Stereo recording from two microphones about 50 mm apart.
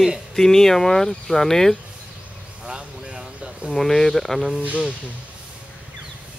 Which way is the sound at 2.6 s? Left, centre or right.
Centre.